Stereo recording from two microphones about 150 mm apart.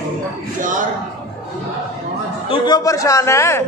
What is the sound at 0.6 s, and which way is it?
Speech, 60° right (ahead or behind).